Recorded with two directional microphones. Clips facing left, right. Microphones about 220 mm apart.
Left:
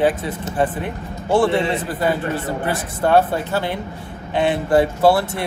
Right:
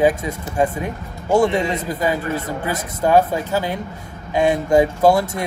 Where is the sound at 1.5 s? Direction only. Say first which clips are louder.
Left 1 dB; 40° right (ahead or behind).